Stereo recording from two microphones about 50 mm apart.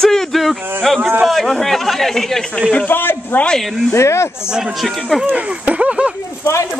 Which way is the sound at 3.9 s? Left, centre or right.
Left.